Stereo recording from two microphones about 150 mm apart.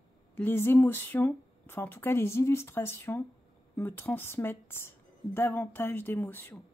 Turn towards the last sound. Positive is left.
turn(degrees=15)  # may be behind; listen again after turning